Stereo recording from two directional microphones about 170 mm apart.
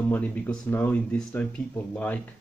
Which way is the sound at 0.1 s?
10° left (ahead or behind).